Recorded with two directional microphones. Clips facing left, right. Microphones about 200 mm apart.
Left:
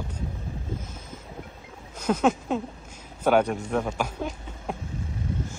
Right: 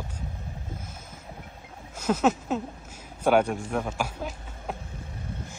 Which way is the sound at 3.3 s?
10° right (ahead or behind).